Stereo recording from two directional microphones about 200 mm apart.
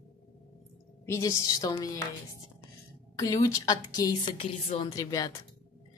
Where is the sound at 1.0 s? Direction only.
15° left (ahead or behind).